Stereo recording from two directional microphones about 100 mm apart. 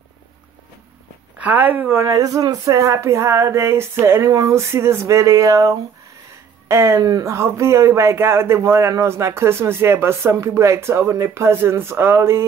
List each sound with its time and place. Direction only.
1.4 s speech: 20° right (ahead or behind)
2.0 s a sound: 35° right (ahead or behind)
6.7 s speech: 30° right (ahead or behind)